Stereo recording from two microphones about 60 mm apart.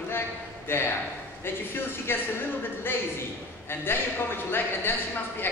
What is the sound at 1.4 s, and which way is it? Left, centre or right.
A man's voice, left.